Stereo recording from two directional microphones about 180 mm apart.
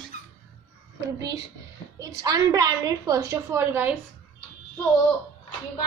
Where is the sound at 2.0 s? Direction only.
20° right (ahead or behind).